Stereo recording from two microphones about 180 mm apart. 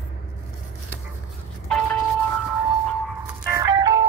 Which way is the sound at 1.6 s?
5° left (ahead or behind).